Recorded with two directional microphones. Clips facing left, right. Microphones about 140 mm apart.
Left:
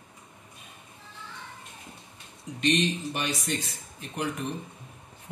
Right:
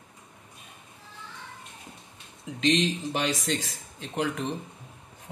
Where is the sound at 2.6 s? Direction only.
90° right.